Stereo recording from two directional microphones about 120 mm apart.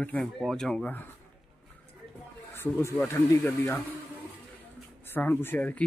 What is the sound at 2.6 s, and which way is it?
Speech, 20° left (ahead or behind).